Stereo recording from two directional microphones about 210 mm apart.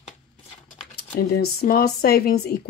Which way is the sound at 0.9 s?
50° left (ahead or behind).